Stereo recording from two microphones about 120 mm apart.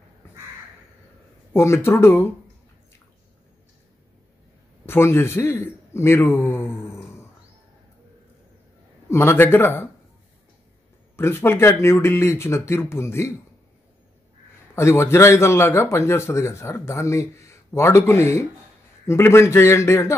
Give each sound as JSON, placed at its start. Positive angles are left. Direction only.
{"t": 1.5, "sound": "speech", "side_deg": 20}
{"t": 4.8, "sound": "speech", "side_deg": 20}
{"t": 9.1, "sound": "a man's voice", "side_deg": 20}
{"t": 11.1, "sound": "speech", "side_deg": 20}
{"t": 14.8, "sound": "speech", "side_deg": 20}